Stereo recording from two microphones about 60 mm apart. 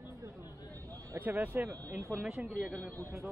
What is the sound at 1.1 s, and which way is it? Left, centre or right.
Speech, right.